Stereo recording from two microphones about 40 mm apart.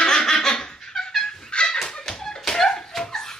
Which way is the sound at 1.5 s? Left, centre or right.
Left.